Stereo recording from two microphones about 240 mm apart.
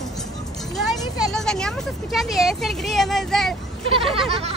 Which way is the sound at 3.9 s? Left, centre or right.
Right.